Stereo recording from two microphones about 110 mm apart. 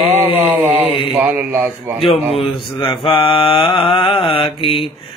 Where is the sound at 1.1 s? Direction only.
15° right (ahead or behind).